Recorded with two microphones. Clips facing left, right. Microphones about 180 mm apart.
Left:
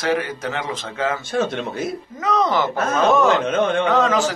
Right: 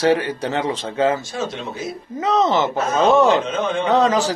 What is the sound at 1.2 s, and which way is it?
Speech, 60° left (ahead or behind).